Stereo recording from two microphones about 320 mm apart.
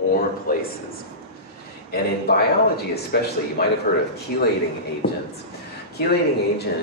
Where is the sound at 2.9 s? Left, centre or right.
Left.